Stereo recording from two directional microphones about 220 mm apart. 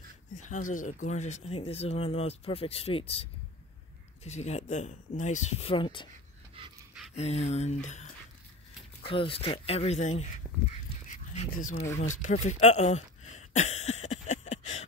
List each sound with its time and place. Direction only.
0.3 s speech: 35° left (ahead or behind)
6.6 s speech: 25° right (ahead or behind)
7.2 s speech: 30° left (ahead or behind)
11.1 s dog: 35° left (ahead or behind)
12.0 s throat clearing: 35° left (ahead or behind)